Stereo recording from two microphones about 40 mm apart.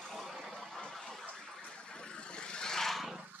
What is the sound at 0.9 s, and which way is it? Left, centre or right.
Bathtub, centre.